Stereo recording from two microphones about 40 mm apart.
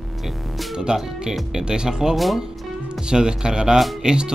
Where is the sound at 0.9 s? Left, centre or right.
Right.